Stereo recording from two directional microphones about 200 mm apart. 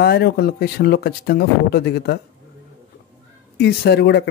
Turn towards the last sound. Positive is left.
turn(degrees=55)  # may be behind; listen again after turning